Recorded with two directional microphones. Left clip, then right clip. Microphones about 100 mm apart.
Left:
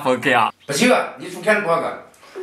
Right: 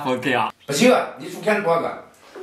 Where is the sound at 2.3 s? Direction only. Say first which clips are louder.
Left 5 dB; 20° left (ahead or behind).